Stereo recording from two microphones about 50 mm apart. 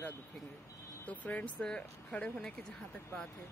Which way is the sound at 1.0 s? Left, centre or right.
Left.